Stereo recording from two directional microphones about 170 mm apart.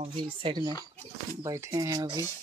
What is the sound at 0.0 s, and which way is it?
Speech, 30° right (ahead or behind).